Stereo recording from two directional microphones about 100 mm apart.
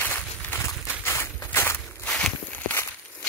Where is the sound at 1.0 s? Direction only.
25° left (ahead or behind).